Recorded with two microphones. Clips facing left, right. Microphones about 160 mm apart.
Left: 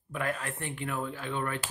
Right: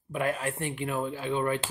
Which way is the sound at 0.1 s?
20° right (ahead or behind).